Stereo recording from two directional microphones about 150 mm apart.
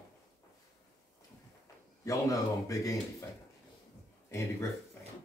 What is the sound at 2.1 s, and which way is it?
Speech, 20° left (ahead or behind).